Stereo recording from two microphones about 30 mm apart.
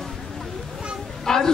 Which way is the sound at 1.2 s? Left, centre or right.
Centre.